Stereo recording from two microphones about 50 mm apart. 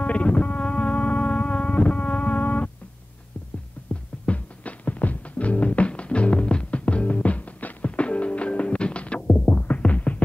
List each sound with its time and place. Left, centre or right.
0.0 s music: left
3.9 s music: left